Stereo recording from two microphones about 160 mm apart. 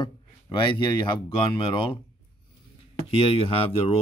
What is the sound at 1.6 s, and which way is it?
Speech, 35° left (ahead or behind).